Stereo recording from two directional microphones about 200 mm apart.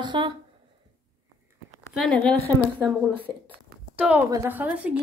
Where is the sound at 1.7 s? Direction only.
Centre (ahead or behind).